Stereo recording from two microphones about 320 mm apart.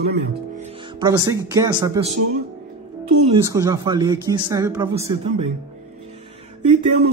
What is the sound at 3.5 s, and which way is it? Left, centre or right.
Speech, centre.